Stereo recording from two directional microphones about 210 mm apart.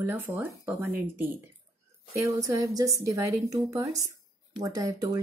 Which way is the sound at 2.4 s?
15° right (ahead or behind).